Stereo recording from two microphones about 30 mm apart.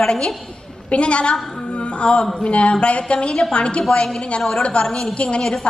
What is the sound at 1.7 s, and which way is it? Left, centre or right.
Music, left.